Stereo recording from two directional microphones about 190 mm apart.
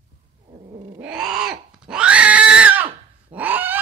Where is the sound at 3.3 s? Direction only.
10° right (ahead or behind).